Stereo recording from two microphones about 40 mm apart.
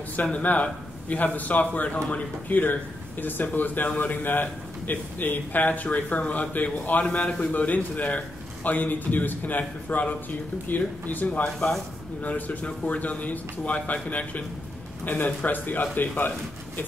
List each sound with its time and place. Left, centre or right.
0.1 s speech: left
11.2 s speech: left